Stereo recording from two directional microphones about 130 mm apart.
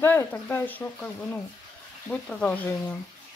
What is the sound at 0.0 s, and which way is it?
Speech, 15° left (ahead or behind).